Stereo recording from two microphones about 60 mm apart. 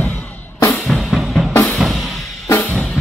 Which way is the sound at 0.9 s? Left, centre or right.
Centre.